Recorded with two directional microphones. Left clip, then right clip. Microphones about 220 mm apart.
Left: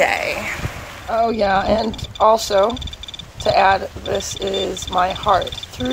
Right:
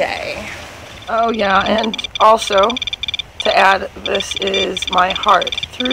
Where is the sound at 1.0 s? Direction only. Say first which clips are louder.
Right 2 dB; 25° right (ahead or behind).